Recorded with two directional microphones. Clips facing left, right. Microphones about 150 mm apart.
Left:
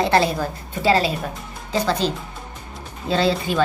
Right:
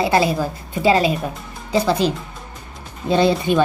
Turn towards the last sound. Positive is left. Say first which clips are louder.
# right 4 dB
turn(degrees=-20)  # may be behind; listen again after turning